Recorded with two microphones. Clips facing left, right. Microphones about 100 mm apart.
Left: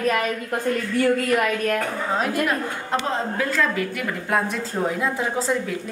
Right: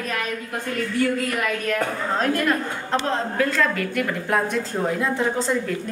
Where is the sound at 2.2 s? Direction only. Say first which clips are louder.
Right 3 dB; 5° left (ahead or behind).